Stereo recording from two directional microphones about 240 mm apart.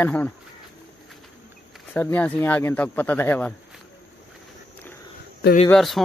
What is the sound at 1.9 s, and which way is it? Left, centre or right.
Speech, centre.